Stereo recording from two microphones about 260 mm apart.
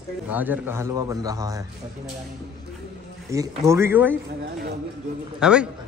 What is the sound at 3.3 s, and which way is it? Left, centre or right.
Speech, centre.